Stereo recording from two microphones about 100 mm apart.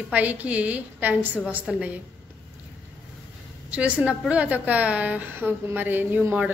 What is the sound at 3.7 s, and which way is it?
A woman's voice, 10° right (ahead or behind).